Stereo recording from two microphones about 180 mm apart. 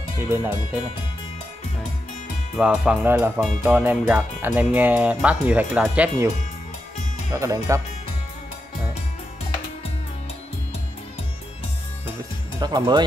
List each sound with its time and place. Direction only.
0.2 s speech: 10° right (ahead or behind)
2.5 s speech: 5° right (ahead or behind)
7.3 s speech: 15° right (ahead or behind)
12.5 s speech: 20° right (ahead or behind)